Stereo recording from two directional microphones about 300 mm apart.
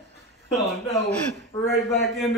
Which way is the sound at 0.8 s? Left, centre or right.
Centre.